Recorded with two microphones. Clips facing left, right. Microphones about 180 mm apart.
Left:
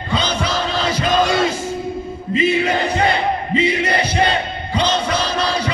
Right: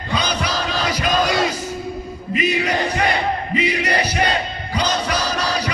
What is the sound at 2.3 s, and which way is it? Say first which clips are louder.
Music: left 3 dB; 25° left (ahead or behind).